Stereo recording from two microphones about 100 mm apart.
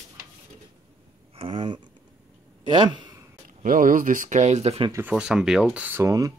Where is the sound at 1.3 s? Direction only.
65° right (ahead or behind).